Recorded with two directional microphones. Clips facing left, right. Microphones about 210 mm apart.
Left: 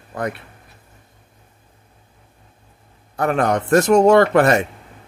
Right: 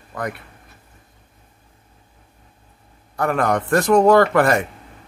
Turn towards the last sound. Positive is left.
turn(degrees=20)  # may be behind; listen again after turning